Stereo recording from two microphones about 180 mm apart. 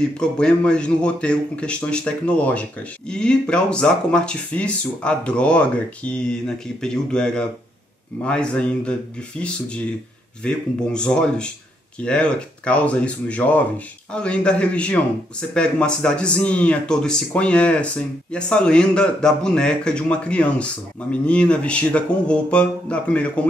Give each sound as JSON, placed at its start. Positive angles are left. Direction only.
{"t": 0.2, "sound": "speech", "side_deg": 5}
{"t": 10.4, "sound": "speech", "side_deg": 5}